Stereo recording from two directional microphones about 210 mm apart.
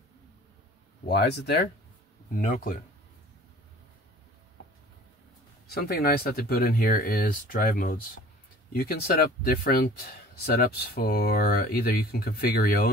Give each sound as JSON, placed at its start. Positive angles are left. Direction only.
{"t": 1.0, "sound": "speech", "side_deg": 55}
{"t": 5.7, "sound": "speech", "side_deg": 50}